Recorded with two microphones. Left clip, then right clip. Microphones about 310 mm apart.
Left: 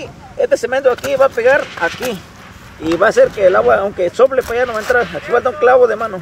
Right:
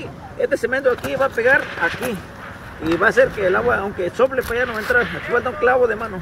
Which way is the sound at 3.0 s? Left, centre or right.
Left.